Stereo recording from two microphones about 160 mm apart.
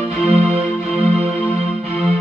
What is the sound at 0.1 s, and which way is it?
Music, 40° right (ahead or behind).